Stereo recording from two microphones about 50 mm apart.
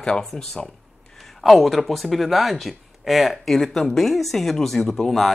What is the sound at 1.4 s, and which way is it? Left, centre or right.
Speech, centre.